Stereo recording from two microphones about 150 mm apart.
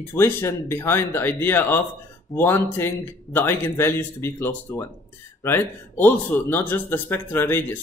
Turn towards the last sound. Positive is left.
turn(degrees=15)  # may be behind; listen again after turning